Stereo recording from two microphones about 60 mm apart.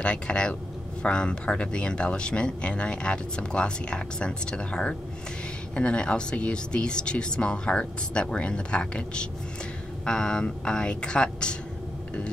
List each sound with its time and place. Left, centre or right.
0.0 s speech: centre